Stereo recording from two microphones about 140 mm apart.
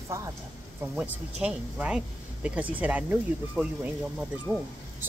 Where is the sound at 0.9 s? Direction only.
10° right (ahead or behind).